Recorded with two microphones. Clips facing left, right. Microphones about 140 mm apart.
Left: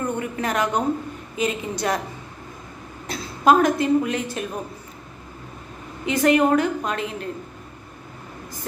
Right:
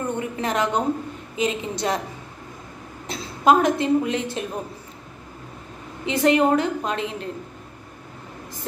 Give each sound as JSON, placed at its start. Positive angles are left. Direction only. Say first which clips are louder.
{"t": 0.2, "sound": "a woman's voice", "louder": "even", "side_deg": -25}
{"t": 3.1, "sound": "a woman's voice", "louder": "even", "side_deg": -20}
{"t": 6.0, "sound": "a woman's voice", "louder": "even", "side_deg": -25}